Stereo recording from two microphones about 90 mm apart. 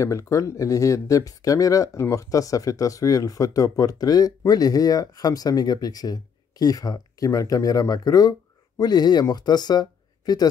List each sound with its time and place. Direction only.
0.0 s speech: 35° left (ahead or behind)